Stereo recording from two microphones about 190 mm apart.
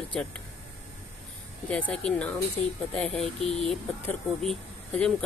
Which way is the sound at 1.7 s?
5° left (ahead or behind).